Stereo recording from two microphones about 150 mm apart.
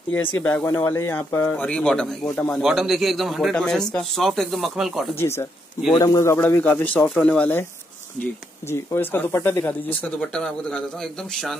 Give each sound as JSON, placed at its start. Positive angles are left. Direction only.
{"t": 0.1, "sound": "speech", "side_deg": 15}
{"t": 2.6, "sound": "speech", "side_deg": 0}
{"t": 5.2, "sound": "speech", "side_deg": 15}